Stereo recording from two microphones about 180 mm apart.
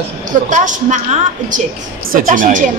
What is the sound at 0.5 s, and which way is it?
A man's voice, 45° right (ahead or behind).